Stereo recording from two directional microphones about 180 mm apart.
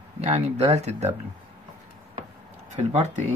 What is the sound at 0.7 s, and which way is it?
Speech, 40° right (ahead or behind).